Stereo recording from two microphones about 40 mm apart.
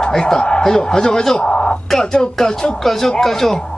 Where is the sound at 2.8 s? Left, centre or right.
Centre.